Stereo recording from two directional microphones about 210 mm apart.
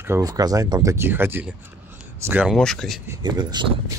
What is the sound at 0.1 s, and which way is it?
Speech, 15° right (ahead or behind).